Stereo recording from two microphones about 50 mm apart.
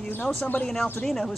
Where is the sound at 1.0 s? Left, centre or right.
Centre.